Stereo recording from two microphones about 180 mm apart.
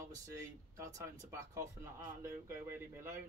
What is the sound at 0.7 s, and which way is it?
Speech, 15° right (ahead or behind).